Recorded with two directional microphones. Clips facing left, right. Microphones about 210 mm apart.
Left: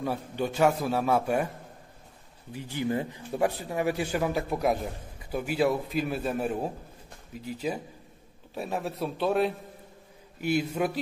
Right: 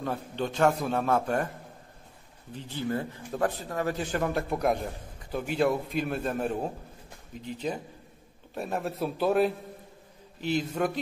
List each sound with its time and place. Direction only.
0.0 s a man's voice: 10° left (ahead or behind)
2.5 s a man's voice: 10° left (ahead or behind)
10.4 s a man's voice: 10° left (ahead or behind)